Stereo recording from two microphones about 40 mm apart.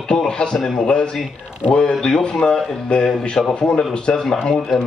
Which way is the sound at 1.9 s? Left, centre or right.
Centre.